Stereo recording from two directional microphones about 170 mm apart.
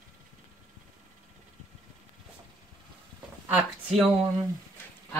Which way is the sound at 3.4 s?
5° right (ahead or behind).